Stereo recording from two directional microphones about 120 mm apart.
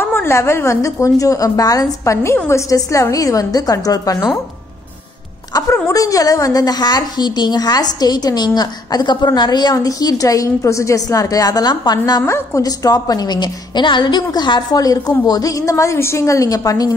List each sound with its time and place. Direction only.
0.0 s a woman's voice: 20° left (ahead or behind)
5.9 s a woman's voice: 30° left (ahead or behind)
12.2 s a woman's voice: 20° left (ahead or behind)